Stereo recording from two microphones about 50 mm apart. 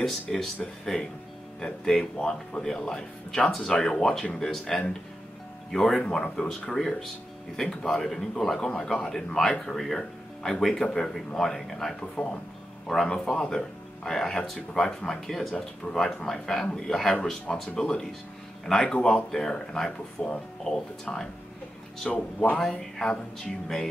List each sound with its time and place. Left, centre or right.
0.0 s speech: centre
1.6 s speech: centre
19.3 s speech: centre